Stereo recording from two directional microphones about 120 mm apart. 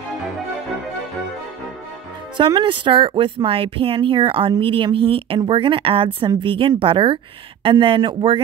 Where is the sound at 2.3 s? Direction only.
45° right (ahead or behind).